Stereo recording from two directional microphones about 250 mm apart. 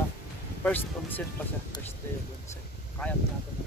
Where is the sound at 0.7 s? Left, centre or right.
Centre.